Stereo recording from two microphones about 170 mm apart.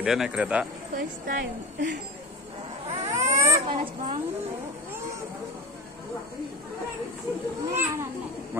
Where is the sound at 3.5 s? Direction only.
30° right (ahead or behind).